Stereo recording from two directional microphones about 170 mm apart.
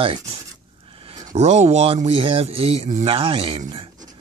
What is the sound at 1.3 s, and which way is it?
Speech, 40° right (ahead or behind).